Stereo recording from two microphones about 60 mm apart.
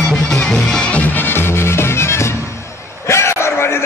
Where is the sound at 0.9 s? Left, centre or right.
Left.